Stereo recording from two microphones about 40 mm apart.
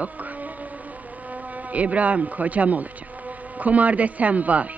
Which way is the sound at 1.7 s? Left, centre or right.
Right.